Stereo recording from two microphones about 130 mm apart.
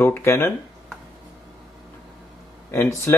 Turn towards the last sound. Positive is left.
turn(degrees=20)  # may be behind; listen again after turning